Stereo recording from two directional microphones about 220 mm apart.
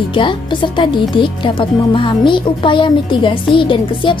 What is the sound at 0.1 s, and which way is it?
Speech, 20° left (ahead or behind).